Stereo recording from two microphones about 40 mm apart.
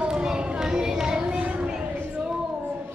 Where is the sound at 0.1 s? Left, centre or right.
Right.